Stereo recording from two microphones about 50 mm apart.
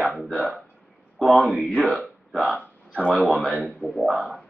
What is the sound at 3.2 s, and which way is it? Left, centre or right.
Speech, centre.